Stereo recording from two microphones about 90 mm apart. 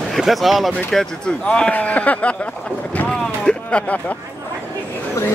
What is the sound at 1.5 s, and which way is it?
Speech, 10° left (ahead or behind).